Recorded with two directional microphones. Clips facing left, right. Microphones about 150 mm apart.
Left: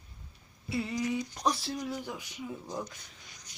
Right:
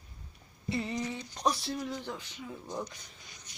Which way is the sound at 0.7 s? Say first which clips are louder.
Left 1 dB; 5° left (ahead or behind).